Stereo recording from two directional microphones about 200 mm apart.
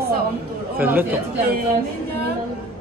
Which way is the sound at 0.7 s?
10° right (ahead or behind).